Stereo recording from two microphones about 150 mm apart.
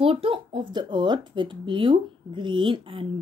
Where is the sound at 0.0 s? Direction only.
35° right (ahead or behind).